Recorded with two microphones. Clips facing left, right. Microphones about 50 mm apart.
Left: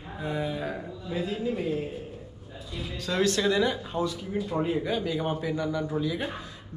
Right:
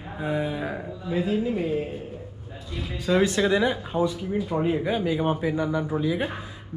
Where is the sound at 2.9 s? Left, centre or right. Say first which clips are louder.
Right 4 dB; centre.